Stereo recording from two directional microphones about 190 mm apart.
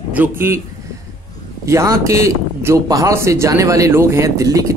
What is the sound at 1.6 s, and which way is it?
A man's voice, 15° right (ahead or behind).